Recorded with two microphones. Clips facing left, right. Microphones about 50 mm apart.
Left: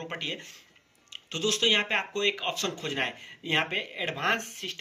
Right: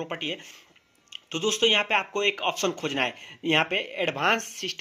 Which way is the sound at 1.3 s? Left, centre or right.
Right.